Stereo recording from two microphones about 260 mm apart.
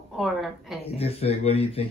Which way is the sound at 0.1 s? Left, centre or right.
Centre.